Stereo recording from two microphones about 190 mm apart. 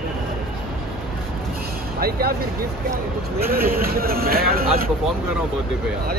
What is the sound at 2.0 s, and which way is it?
Speech, 55° right (ahead or behind).